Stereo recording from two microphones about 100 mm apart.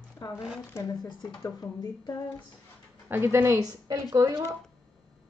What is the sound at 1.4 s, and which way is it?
Speech, 35° left (ahead or behind).